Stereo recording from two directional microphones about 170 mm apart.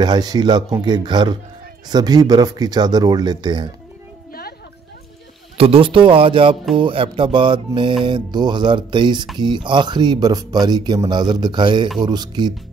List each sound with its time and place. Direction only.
0.0 s speech: 25° right (ahead or behind)
4.3 s a sound: 65° left (ahead or behind)
5.6 s speech: 30° right (ahead or behind)